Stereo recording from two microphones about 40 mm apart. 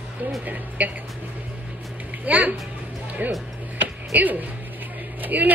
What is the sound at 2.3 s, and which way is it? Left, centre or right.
Speech, right.